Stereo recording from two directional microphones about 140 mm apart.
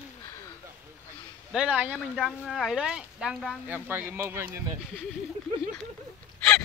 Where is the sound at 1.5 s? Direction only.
10° right (ahead or behind).